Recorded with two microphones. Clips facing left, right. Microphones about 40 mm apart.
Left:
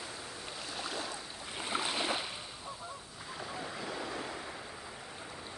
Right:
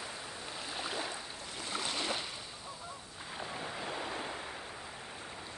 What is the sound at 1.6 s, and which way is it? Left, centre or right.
Boat, centre.